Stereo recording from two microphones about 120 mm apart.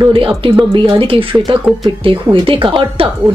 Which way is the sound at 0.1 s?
50° right (ahead or behind).